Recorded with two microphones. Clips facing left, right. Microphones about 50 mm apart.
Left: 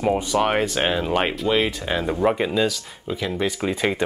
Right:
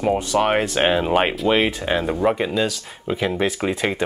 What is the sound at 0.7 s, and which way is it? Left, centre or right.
Speech, centre.